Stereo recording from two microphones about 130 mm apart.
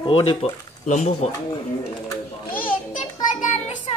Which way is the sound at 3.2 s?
75° left (ahead or behind).